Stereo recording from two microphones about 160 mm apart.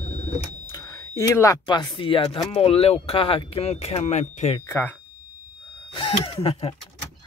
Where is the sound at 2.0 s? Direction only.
35° left (ahead or behind).